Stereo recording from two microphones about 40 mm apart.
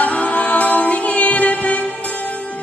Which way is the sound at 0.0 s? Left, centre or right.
Left.